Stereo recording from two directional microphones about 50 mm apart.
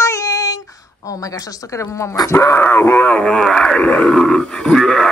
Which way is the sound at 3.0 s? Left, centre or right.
Left.